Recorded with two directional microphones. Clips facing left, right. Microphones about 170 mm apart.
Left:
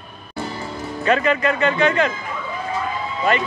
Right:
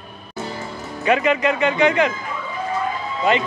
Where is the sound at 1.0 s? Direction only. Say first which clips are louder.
Right 1 dB; 15° right (ahead or behind).